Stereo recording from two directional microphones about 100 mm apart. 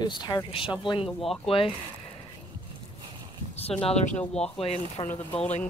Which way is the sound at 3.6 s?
85° left.